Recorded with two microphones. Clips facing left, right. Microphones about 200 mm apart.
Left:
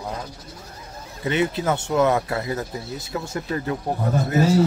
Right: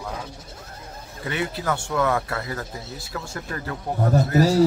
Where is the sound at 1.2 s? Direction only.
20° left (ahead or behind).